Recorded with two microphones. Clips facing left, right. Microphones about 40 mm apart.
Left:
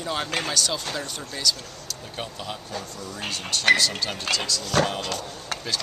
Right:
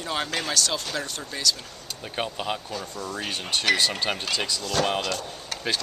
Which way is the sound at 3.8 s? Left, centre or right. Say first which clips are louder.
Right 1 dB; right.